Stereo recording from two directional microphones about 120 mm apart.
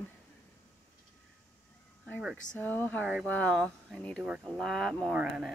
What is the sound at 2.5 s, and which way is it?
A woman's voice, 15° left (ahead or behind).